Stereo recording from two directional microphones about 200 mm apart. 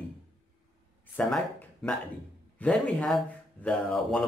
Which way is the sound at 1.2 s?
5° left (ahead or behind).